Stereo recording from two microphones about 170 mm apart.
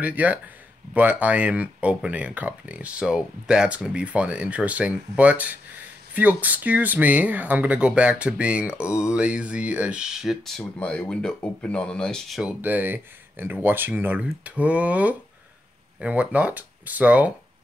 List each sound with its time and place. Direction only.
0.0 s speech: 10° right (ahead or behind)